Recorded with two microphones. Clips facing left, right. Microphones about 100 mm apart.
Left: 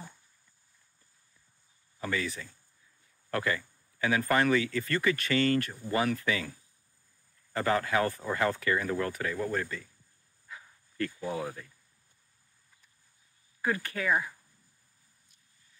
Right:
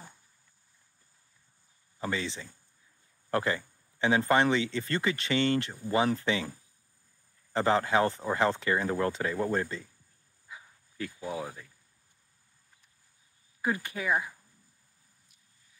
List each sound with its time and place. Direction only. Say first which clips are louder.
2.0 s speech: even; 20° right (ahead or behind)
7.5 s speech: right 2 dB; 25° right (ahead or behind)
10.5 s dog: left 1 dB; 10° right (ahead or behind)
13.6 s speech: even; 15° right (ahead or behind)